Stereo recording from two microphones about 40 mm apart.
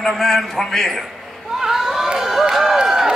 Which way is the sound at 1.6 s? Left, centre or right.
Centre.